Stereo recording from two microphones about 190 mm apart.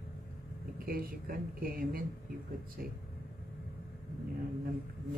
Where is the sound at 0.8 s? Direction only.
50° right (ahead or behind).